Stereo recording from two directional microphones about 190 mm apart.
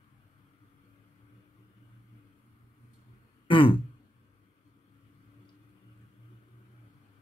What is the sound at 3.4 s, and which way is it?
Throat clearing, 25° left (ahead or behind).